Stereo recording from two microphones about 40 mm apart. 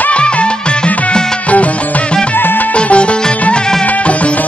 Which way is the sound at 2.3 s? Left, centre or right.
Left.